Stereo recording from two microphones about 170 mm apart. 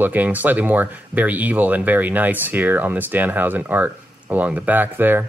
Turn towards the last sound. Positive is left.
turn(degrees=-10)  # may be behind; listen again after turning